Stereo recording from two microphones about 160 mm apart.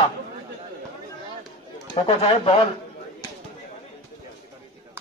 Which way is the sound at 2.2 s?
35° left (ahead or behind).